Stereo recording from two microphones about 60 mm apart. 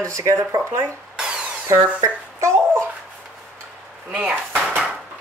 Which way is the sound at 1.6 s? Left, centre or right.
Right.